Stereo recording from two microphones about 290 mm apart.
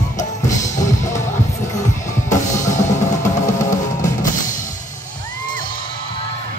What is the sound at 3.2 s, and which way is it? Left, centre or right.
Music, left.